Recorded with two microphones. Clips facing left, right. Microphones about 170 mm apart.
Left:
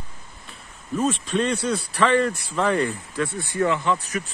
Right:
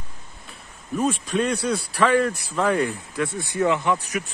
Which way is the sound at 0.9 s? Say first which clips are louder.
Even; 5° right (ahead or behind).